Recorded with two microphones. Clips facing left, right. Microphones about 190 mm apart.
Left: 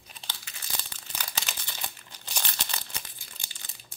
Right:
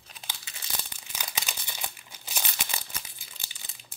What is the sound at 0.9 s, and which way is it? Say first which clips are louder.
Crumpling: even; 10° right (ahead or behind).